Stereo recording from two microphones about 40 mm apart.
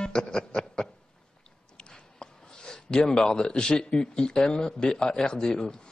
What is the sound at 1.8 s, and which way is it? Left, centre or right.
Speech, left.